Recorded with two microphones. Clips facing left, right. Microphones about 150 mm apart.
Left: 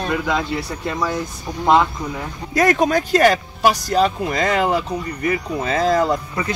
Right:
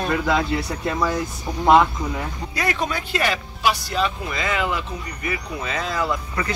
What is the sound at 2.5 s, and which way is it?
Speech, 45° left (ahead or behind).